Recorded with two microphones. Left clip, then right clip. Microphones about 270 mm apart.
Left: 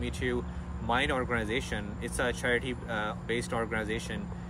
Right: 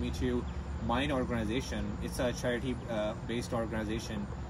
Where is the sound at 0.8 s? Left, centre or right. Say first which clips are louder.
Left 4 dB; left.